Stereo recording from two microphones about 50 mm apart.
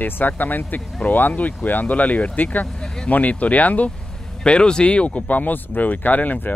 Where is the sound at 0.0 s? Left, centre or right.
Left.